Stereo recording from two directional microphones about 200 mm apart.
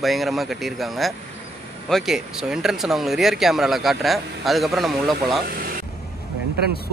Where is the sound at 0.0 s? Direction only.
Centre (ahead or behind).